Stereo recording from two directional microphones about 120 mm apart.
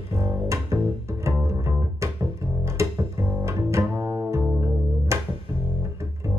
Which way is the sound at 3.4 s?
25° right (ahead or behind).